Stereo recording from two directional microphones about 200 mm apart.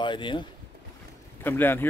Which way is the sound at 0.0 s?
25° left (ahead or behind).